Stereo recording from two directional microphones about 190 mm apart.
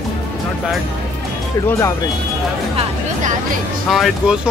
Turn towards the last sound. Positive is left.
turn(degrees=-5)  # may be behind; listen again after turning